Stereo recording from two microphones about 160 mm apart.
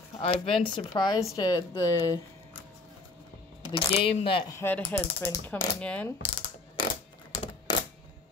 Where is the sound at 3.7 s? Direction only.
35° left (ahead or behind).